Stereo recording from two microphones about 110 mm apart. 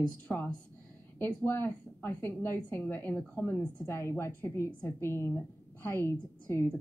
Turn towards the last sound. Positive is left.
turn(degrees=20)  # may be behind; listen again after turning